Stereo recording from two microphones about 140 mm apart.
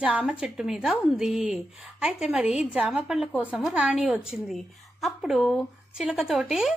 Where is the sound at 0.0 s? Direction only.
10° right (ahead or behind).